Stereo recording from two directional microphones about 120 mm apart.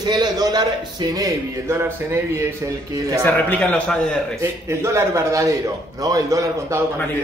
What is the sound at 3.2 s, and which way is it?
Speech, 15° left (ahead or behind).